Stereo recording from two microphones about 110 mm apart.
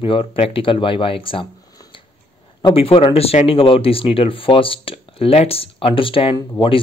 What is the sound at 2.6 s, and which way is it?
Speech, 55° left (ahead or behind).